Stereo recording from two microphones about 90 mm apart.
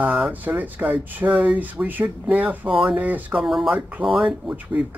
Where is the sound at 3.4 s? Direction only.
Centre (ahead or behind).